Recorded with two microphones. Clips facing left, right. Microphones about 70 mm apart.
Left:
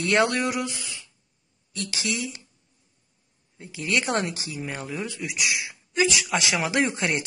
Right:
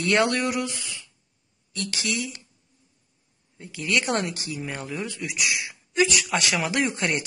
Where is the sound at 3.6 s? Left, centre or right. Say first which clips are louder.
Right 1 dB; centre.